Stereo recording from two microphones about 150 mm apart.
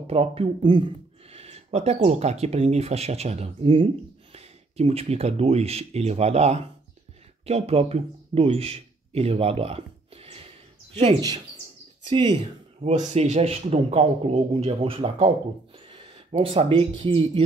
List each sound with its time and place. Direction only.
0.0 s speech: 40° right (ahead or behind)
11.1 s speech: 25° right (ahead or behind)
12.4 s speech: 55° right (ahead or behind)
15.9 s a sound: 35° right (ahead or behind)
16.7 s speech: 35° right (ahead or behind)